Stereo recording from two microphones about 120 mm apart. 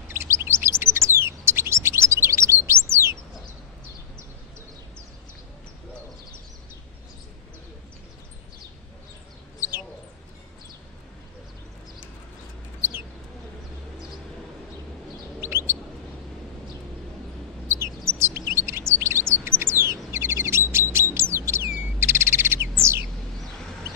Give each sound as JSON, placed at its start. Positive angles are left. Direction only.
{"t": 0.3, "sound": "chirp", "side_deg": -20}
{"t": 15.4, "sound": "bird", "side_deg": -20}
{"t": 17.6, "sound": "bird", "side_deg": -20}
{"t": 18.2, "sound": "chirp", "side_deg": -20}
{"t": 21.1, "sound": "bird", "side_deg": -20}